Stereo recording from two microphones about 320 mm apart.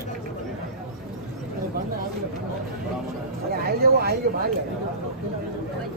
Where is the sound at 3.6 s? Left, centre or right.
Right.